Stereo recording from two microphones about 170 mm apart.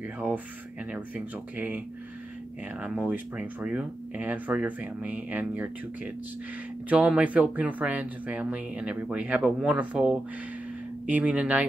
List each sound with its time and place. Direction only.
0.9 s speech: 10° right (ahead or behind)
2.8 s speech: 10° right (ahead or behind)